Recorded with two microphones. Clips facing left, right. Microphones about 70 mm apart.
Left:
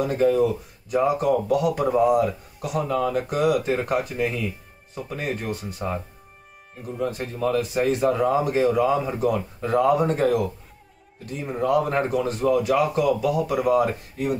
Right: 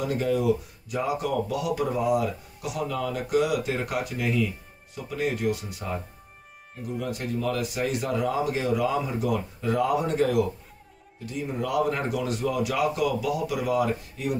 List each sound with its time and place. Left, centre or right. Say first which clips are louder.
0.1 s speech: left 3 dB; left
7.0 s speech: left 4 dB; left